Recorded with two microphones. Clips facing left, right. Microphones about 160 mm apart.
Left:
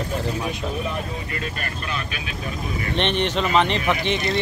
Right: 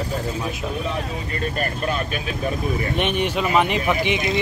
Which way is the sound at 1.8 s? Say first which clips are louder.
Right 5 dB; 40° right (ahead or behind).